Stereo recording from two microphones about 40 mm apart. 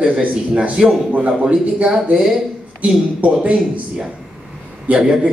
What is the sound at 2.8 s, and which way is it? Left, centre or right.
Speech, right.